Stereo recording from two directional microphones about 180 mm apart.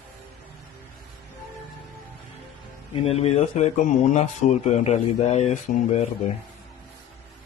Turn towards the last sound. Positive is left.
turn(degrees=40)  # may be behind; listen again after turning